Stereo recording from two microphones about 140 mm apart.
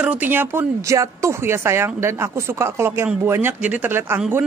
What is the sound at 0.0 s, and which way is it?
Speech, 10° right (ahead or behind).